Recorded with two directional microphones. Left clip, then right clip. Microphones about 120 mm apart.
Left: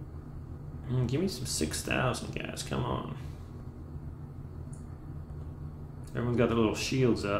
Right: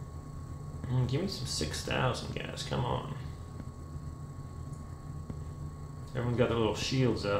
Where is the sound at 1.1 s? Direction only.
30° left (ahead or behind).